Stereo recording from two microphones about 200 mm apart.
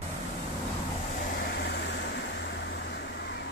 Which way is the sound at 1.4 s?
55° left (ahead or behind).